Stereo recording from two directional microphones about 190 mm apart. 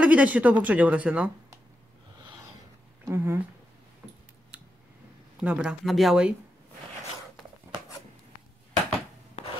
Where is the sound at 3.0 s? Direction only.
15° right (ahead or behind).